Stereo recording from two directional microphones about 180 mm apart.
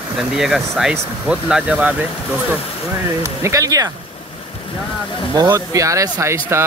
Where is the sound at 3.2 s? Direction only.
15° right (ahead or behind).